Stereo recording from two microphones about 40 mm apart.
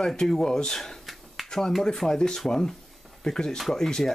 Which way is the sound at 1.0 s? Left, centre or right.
Centre.